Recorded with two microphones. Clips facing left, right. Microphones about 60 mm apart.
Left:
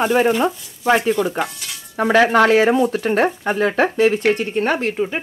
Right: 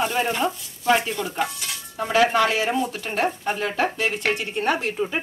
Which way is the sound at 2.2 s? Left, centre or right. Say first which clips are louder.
Left 8 dB; left.